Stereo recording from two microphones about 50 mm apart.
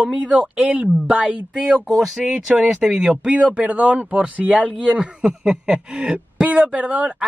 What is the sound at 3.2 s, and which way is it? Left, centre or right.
Speech, right.